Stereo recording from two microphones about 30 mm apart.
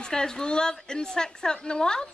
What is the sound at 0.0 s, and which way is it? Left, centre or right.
A woman's voice, left.